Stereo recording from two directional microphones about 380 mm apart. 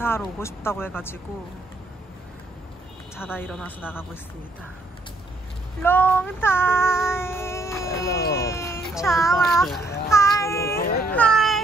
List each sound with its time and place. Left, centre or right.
0.0 s speech: centre
3.2 s speech: centre
5.8 s child singing: centre
8.4 s a sound: centre
10.0 s child singing: centre
10.8 s baby cry: left
11.1 s a sound: centre